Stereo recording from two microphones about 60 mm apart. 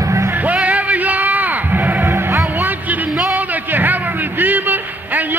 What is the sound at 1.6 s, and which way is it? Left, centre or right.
Music, right.